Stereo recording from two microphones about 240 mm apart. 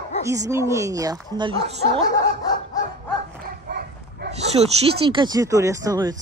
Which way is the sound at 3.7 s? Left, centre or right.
Right.